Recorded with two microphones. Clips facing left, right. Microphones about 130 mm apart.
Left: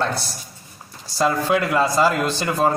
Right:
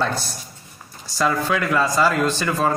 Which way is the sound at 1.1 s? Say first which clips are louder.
Left 2 dB; 35° left (ahead or behind).